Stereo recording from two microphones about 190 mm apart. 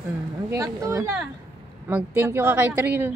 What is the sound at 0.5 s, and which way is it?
A woman's voice, 15° right (ahead or behind).